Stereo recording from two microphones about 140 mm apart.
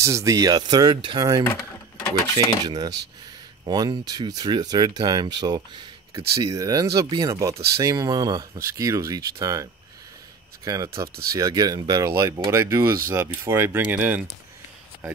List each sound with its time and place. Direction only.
0.0 s speech: 20° right (ahead or behind)
1.4 s a sound: 15° left (ahead or behind)
2.6 s speech: 30° right (ahead or behind); by 14.2 s 10° right (ahead or behind)